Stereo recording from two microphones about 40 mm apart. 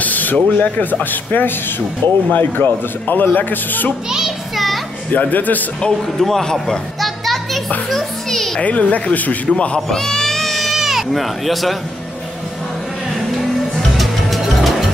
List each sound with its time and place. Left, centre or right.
0.0 s a man's voice: left
2.0 s a man's voice: left
5.1 s a man's voice: left
6.1 s a man's voice: centre
7.0 s children playing: centre
7.9 s music: centre
8.5 s speech: left
9.5 s speech: left
9.8 s bleat: centre
13.9 s music: centre